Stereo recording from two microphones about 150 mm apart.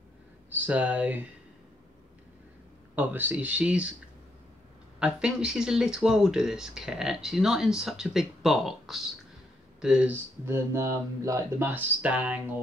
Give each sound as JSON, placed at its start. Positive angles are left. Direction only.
{"t": 0.5, "sound": "speech", "side_deg": -10}
{"t": 3.0, "sound": "speech", "side_deg": -10}
{"t": 5.0, "sound": "speech", "side_deg": -5}
{"t": 10.4, "sound": "speech", "side_deg": -15}